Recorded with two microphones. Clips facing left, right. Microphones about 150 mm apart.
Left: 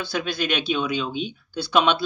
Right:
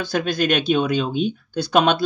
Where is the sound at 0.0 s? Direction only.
45° right (ahead or behind).